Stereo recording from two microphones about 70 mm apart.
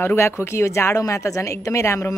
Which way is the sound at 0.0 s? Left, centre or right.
Left.